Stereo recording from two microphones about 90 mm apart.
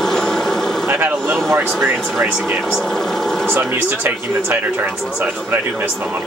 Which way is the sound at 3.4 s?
25° right (ahead or behind).